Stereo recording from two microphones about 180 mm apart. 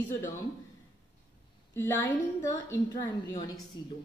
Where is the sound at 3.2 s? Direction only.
20° left (ahead or behind).